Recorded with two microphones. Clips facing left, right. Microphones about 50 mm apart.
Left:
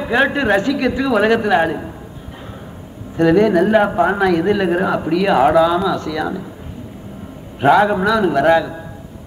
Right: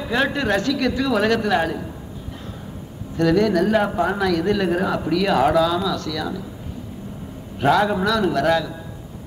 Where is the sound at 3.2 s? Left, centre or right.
Left.